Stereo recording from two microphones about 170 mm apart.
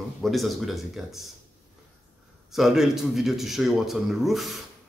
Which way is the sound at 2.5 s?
Centre (ahead or behind).